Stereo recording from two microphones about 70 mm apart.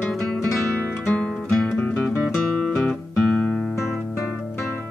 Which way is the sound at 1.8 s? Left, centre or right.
Centre.